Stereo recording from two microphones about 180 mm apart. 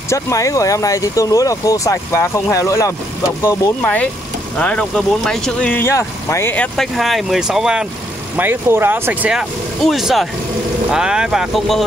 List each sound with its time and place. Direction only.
0.1 s speech: 20° left (ahead or behind); by 11.8 s centre (ahead or behind)